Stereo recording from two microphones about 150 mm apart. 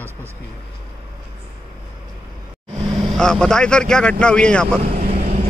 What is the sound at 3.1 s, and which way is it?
A man's voice, 5° left (ahead or behind).